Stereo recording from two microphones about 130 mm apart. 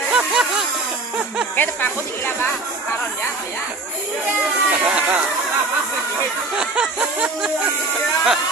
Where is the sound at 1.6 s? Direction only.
15° left (ahead or behind).